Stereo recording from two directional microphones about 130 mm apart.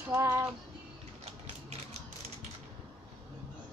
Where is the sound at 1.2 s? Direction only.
50° right (ahead or behind).